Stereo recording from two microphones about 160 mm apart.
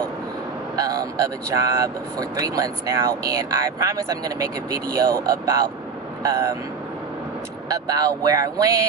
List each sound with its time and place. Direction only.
0.7 s speech: 25° right (ahead or behind)
7.7 s speech: 25° right (ahead or behind)